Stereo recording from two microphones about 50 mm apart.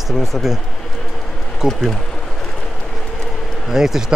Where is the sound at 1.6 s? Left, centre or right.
Centre.